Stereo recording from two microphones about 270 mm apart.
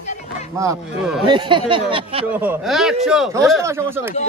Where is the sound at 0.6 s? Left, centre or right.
Centre.